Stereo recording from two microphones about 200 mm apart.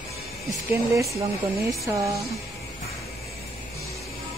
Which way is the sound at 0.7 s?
15° right (ahead or behind).